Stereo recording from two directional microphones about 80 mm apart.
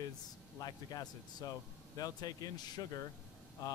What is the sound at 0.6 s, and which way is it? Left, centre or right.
Speech, left.